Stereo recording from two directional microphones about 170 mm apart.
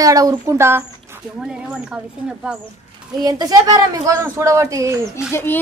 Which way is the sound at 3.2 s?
25° right (ahead or behind).